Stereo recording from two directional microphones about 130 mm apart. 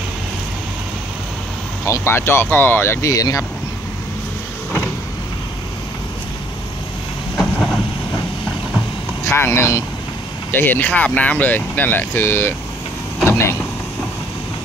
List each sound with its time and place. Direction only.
1.9 s speech: 20° left (ahead or behind)
7.5 s vehicle: 5° left (ahead or behind)
9.2 s speech: 20° left (ahead or behind)
13.2 s vehicle: 20° left (ahead or behind)